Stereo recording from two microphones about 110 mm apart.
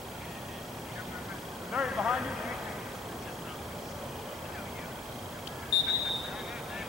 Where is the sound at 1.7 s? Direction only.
10° right (ahead or behind).